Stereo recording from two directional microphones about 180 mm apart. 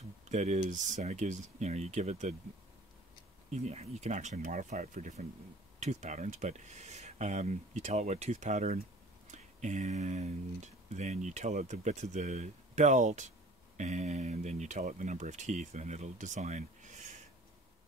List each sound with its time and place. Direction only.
0.3 s speech: 40° right (ahead or behind)
3.5 s speech: 40° right (ahead or behind)